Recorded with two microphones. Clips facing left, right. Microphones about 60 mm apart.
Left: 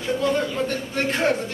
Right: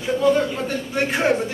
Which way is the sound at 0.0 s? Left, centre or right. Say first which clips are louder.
Right 4 dB; centre.